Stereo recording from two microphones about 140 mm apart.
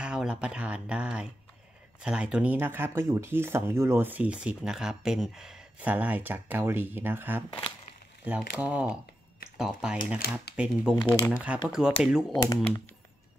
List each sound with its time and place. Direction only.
0.0 s speech: 5° right (ahead or behind)
9.9 s speech: 90° left
10.3 s speech: 10° right (ahead or behind)
12.3 s speech: 25° left (ahead or behind)